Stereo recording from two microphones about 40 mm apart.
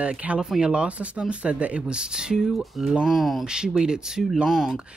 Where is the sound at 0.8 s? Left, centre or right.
Right; by 2.9 s centre.